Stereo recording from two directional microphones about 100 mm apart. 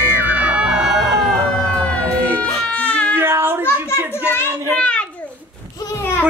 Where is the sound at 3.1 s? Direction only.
25° right (ahead or behind).